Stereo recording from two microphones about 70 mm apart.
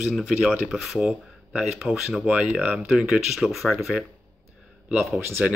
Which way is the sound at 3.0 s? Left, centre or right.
Centre.